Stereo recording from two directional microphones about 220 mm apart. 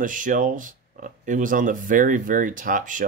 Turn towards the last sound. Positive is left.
turn(degrees=-35)  # may be behind; listen again after turning